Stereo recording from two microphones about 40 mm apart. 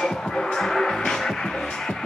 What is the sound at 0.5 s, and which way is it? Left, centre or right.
Music, centre.